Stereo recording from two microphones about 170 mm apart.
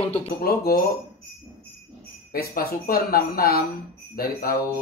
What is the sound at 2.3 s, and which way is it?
Speech, 60° left (ahead or behind).